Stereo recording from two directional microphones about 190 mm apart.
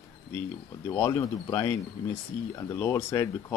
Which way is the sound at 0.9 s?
15° left (ahead or behind).